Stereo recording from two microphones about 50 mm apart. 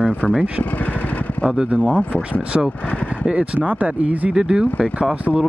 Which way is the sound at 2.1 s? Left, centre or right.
Right.